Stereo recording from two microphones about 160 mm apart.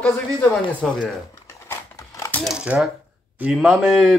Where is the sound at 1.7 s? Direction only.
15° left (ahead or behind).